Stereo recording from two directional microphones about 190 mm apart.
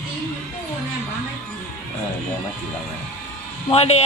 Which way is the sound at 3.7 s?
35° left (ahead or behind).